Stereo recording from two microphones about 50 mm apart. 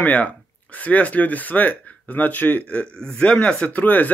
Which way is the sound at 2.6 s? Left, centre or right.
Left.